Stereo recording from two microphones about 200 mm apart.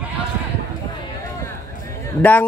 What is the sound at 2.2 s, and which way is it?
Speech, 10° left (ahead or behind).